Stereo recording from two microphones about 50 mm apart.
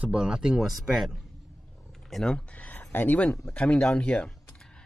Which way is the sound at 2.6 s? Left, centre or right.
Left.